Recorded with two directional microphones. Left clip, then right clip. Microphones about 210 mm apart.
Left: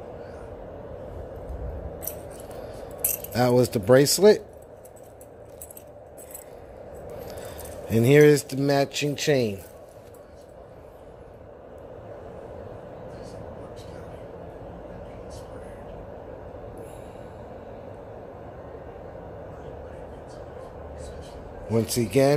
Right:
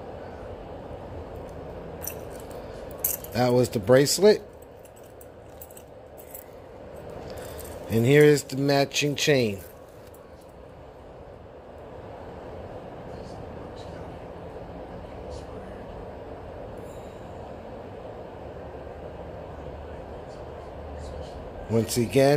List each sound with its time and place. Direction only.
3.3 s speech: 15° left (ahead or behind)
7.9 s speech: 15° left (ahead or behind)
21.7 s speech: 10° left (ahead or behind)